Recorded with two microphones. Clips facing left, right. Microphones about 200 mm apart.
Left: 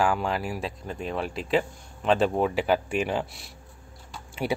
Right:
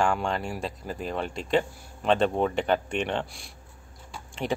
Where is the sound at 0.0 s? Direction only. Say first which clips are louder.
Left 1 dB; 5° left (ahead or behind).